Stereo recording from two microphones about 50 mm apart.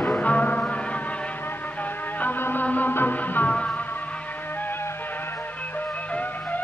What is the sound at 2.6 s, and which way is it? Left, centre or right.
Music, left.